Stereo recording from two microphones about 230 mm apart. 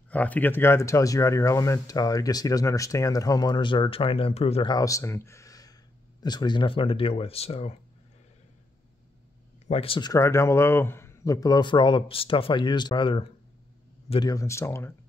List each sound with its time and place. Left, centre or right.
0.1 s speech: centre; by 7.7 s left
9.7 s speech: left